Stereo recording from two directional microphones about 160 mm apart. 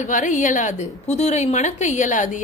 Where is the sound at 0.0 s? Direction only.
50° left (ahead or behind).